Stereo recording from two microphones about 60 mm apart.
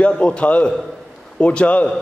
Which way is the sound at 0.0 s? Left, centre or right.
Centre.